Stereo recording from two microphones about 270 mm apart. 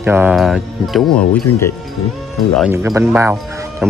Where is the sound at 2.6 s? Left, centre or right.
Centre.